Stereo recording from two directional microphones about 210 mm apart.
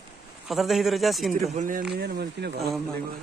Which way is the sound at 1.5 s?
35° right (ahead or behind).